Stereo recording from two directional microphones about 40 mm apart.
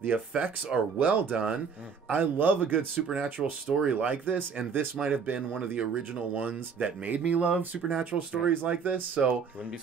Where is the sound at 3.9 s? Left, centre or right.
Right.